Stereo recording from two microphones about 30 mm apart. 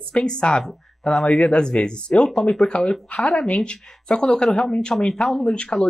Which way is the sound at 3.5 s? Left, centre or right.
Left.